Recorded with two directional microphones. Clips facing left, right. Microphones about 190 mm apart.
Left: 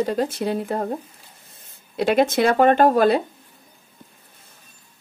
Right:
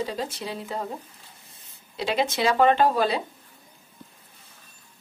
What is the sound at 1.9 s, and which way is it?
Speech, 50° left (ahead or behind).